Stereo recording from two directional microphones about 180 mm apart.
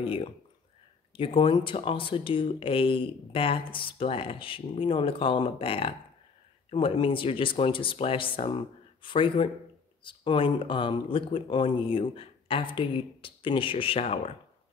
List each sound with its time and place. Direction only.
0.0 s speech: 30° left (ahead or behind)